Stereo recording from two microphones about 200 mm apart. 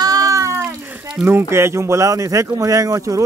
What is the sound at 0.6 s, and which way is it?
Speech, 5° right (ahead or behind).